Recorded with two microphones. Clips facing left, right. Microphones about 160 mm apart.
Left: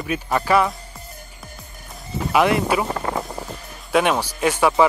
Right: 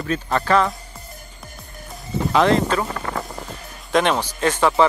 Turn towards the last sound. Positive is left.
turn(degrees=10)  # may be behind; listen again after turning